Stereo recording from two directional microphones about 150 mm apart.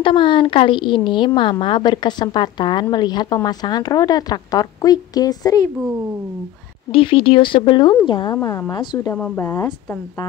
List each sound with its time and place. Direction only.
0.0 s a woman's voice: 35° left (ahead or behind)
6.9 s speech: 35° left (ahead or behind)
8.4 s a woman's voice: 20° left (ahead or behind)
9.1 s speech: 15° left (ahead or behind)